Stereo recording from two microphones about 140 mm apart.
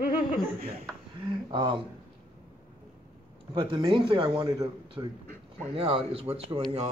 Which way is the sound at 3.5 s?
35° right (ahead or behind).